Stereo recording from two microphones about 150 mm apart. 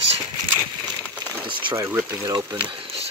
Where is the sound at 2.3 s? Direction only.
25° right (ahead or behind).